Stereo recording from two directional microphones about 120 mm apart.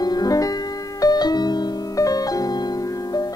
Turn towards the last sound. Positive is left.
turn(degrees=30)  # may be behind; listen again after turning